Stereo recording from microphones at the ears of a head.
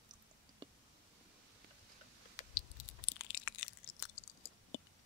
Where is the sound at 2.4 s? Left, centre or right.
Left.